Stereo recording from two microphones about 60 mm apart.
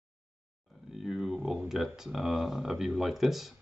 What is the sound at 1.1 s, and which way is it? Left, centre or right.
Speech, centre.